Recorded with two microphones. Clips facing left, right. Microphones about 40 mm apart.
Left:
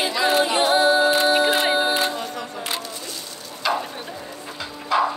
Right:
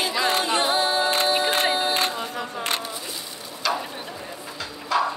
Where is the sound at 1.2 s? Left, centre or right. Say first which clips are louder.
Left 4 dB; centre.